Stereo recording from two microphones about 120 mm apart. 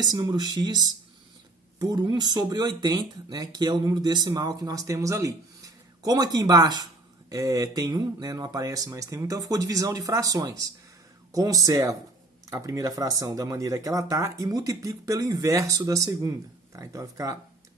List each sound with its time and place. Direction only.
0.0 s speech: 35° right (ahead or behind)